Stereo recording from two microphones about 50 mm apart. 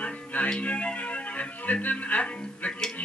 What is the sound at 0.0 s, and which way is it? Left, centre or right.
Music, left.